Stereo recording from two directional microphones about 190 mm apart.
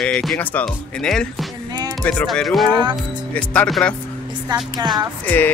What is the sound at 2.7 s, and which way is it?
Speech, 25° right (ahead or behind).